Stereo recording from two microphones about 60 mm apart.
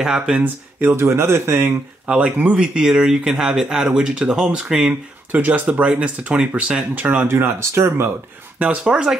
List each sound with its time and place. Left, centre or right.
0.0 s speech: centre
0.4 s speech: right
0.9 s speech: right
2.0 s speech: centre
5.3 s speech: right
8.5 s speech: right